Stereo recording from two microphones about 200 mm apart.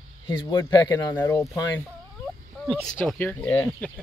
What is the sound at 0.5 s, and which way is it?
Speech, 20° left (ahead or behind).